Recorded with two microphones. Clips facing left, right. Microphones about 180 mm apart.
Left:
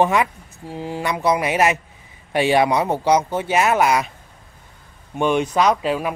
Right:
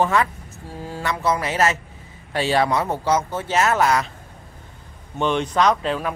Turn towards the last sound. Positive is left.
turn(degrees=10)  # may be behind; listen again after turning